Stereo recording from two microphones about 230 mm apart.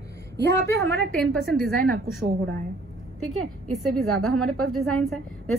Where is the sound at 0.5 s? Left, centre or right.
Right.